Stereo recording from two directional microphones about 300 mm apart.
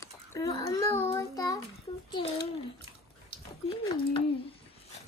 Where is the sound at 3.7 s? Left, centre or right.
Centre.